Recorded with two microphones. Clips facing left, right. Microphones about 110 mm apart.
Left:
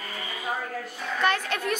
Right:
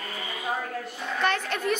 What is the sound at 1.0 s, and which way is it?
Speech, 5° left (ahead or behind).